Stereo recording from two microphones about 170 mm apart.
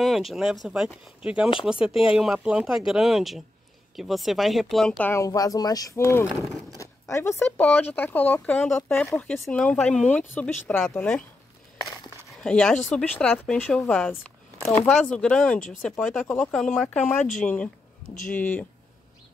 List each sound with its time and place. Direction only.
0.0 s speech: centre (ahead or behind)
5.1 s speech: 20° left (ahead or behind)
6.2 s speech: centre (ahead or behind)
6.8 s speech: 15° left (ahead or behind)
12.4 s speech: 5° left (ahead or behind)